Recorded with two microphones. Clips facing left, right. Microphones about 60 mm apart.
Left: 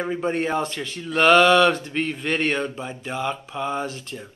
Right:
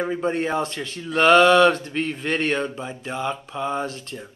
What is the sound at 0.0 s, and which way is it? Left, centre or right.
Speech, centre.